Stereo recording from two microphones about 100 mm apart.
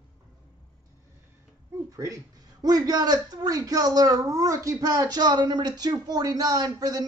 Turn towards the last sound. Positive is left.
turn(degrees=-40)  # may be behind; listen again after turning